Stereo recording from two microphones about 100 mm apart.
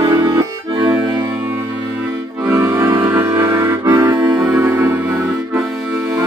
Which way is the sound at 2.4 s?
30° right (ahead or behind).